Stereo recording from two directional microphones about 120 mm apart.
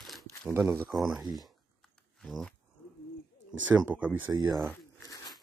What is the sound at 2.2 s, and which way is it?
Speech, 5° left (ahead or behind).